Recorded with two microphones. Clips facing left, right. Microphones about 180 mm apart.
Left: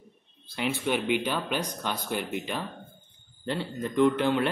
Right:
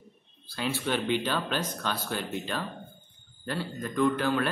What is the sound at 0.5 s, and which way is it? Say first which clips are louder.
A man's voice: left 2 dB; 20° left (ahead or behind).